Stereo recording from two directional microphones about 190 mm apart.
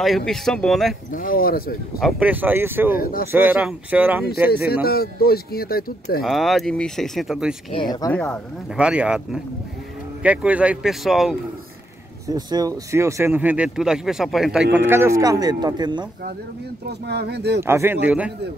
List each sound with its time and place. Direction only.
0.0 s speech: centre (ahead or behind)
1.1 s speech: 50° left (ahead or behind)
2.0 s speech: 5° right (ahead or behind)
3.0 s speech: 50° left (ahead or behind)
3.3 s speech: 10° right (ahead or behind)
4.8 s speech: 55° left (ahead or behind)
6.2 s speech: centre (ahead or behind)
7.7 s speech: 20° left (ahead or behind)
8.1 s speech: 5° left (ahead or behind)
8.7 s speech: 5° right (ahead or behind)
12.3 s speech: 20° right (ahead or behind)
16.8 s speech: 60° right (ahead or behind)
17.6 s speech: 15° right (ahead or behind)